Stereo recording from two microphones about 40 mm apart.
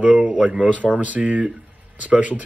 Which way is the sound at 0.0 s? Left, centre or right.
Right.